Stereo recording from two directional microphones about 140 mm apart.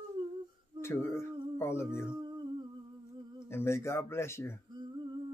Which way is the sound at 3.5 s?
20° left (ahead or behind).